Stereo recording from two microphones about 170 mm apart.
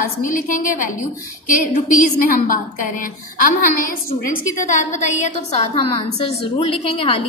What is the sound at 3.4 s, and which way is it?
A woman's voice, 55° left (ahead or behind).